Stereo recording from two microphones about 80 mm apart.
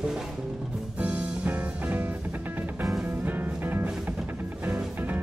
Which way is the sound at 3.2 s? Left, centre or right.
Right.